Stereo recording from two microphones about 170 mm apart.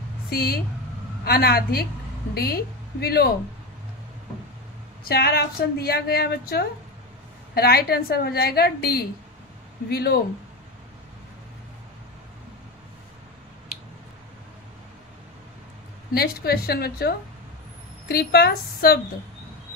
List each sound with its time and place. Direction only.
0.3 s a woman's voice: 65° left (ahead or behind)
5.0 s a woman's voice: 65° left (ahead or behind)
16.1 s a woman's voice: 65° left (ahead or behind)